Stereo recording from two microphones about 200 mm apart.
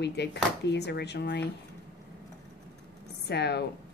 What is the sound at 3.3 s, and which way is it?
Speech, 55° left (ahead or behind).